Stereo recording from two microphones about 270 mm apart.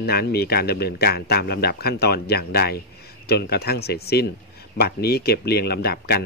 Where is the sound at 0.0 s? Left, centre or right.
Left.